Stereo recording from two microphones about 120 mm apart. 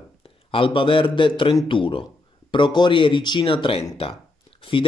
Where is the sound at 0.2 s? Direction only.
50° left (ahead or behind).